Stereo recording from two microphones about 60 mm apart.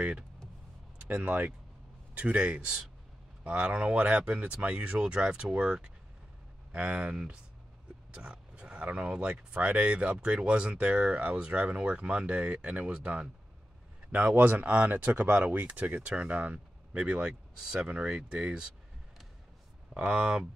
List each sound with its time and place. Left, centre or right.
0.9 s speech: right
14.1 s speech: right
19.9 s speech: centre